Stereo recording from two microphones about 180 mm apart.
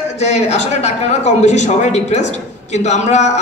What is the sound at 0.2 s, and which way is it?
Speech, 35° left (ahead or behind).